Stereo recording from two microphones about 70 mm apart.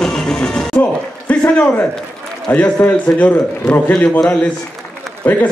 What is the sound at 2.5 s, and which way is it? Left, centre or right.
A man's voice, left.